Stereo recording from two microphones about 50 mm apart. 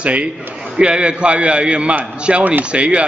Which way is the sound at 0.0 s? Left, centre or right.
Right.